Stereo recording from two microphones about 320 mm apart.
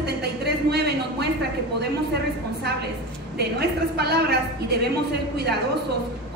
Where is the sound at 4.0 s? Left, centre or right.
Right.